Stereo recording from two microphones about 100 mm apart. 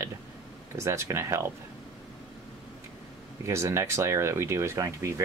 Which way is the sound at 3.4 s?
30° right (ahead or behind).